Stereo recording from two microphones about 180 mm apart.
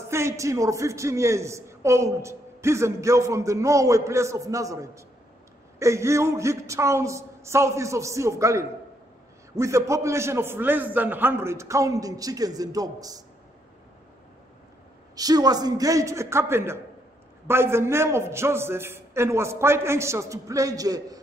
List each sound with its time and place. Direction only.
0.1 s a man's voice: 15° right (ahead or behind)
15.1 s a man's voice: 20° right (ahead or behind)